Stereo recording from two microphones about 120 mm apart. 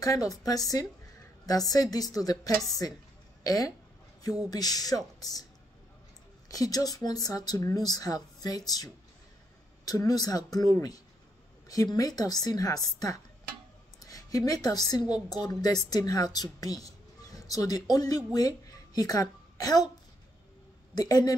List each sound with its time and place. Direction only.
0.0 s speech: 30° left (ahead or behind)
6.5 s a woman's voice: 30° left (ahead or behind)
20.9 s speech: 30° left (ahead or behind)